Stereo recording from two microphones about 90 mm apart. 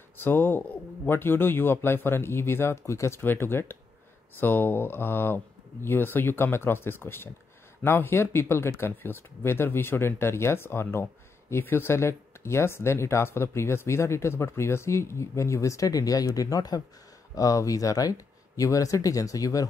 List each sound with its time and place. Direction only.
0.2 s a man's voice: 25° left (ahead or behind); by 19.7 s 40° left (ahead or behind)